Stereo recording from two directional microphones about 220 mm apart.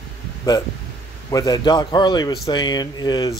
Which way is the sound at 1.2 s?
15° left (ahead or behind).